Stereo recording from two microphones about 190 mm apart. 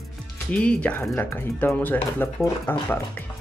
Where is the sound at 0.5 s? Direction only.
5° left (ahead or behind).